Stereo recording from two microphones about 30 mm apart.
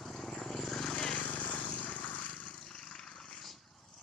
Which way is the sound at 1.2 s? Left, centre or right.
Left.